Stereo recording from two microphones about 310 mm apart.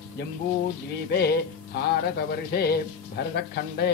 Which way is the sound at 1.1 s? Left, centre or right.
Left.